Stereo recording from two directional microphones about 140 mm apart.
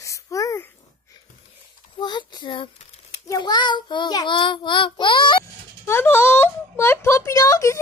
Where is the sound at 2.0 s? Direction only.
30° left (ahead or behind).